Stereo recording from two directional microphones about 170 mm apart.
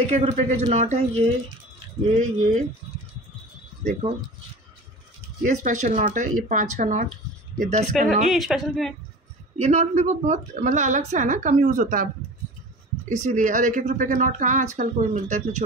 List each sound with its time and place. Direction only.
0.0 s a woman's voice: 40° right (ahead or behind)
5.4 s a woman's voice: 45° right (ahead or behind)
8.3 s a woman's voice: centre (ahead or behind)
9.6 s a woman's voice: 40° right (ahead or behind)
13.1 s a woman's voice: 45° right (ahead or behind)